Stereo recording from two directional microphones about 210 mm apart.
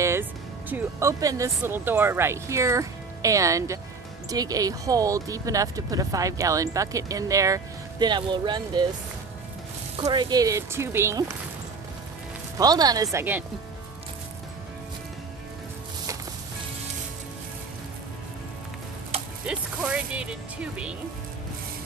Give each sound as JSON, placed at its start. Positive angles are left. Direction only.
{"t": 0.0, "sound": "speech", "side_deg": -10}
{"t": 9.9, "sound": "speech", "side_deg": -20}
{"t": 12.5, "sound": "speech", "side_deg": -20}
{"t": 19.4, "sound": "music", "side_deg": -5}